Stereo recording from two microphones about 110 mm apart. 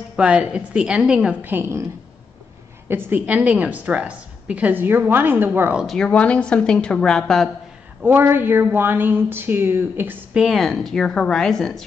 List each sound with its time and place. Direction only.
0.1 s a woman's voice: 10° right (ahead or behind)
1.4 s a woman's voice: 20° right (ahead or behind)
2.9 s a woman's voice: 15° right (ahead or behind)
5.8 s a woman's voice: centre (ahead or behind)
8.0 s a woman's voice: 20° right (ahead or behind)
10.3 s a woman's voice: 5° right (ahead or behind)